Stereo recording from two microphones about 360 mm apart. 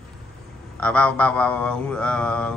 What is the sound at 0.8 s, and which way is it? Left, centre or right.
A man's voice, centre.